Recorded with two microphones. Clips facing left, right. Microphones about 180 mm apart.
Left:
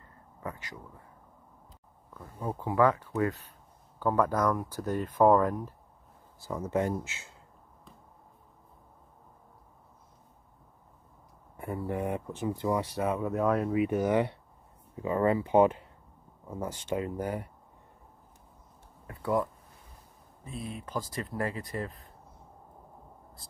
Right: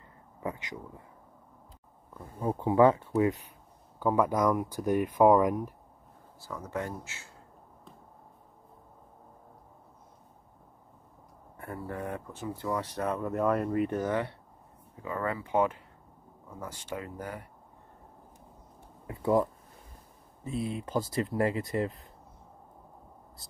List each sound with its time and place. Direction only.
0.4 s speech: 20° right (ahead or behind)
2.5 s speech: 25° right (ahead or behind)
6.4 s speech: 20° left (ahead or behind)
11.5 s speech: 15° left (ahead or behind)
19.0 s speech: 20° right (ahead or behind)
20.5 s speech: 30° right (ahead or behind)